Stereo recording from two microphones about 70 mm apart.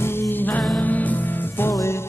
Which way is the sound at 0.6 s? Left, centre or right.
Centre.